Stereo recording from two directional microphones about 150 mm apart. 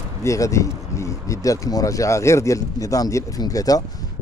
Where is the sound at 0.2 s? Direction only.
20° left (ahead or behind).